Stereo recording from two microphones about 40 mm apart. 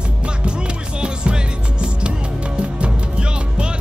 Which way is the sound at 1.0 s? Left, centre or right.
Right.